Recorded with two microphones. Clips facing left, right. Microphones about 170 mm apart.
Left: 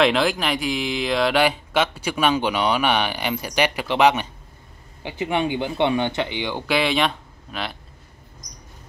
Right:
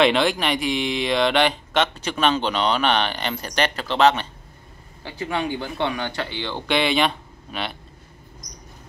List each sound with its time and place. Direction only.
0.0 s speech: centre (ahead or behind)
6.6 s speech: centre (ahead or behind)